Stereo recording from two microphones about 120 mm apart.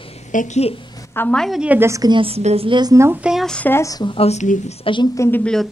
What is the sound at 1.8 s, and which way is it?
Speech, 25° right (ahead or behind).